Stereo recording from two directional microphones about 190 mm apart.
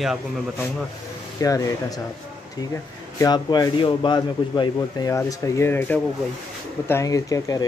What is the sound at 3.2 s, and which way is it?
A man's voice, 20° left (ahead or behind).